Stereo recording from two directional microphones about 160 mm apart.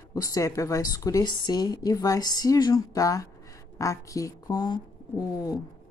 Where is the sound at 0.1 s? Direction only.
20° left (ahead or behind).